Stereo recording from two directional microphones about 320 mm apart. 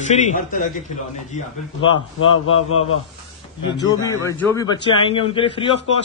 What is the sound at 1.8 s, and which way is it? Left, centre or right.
Speech, centre.